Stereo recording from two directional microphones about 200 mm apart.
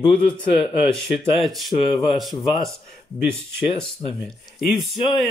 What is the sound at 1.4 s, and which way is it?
Speech, centre (ahead or behind).